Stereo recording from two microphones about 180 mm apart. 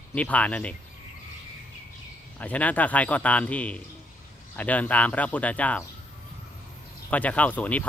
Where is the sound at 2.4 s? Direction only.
10° left (ahead or behind).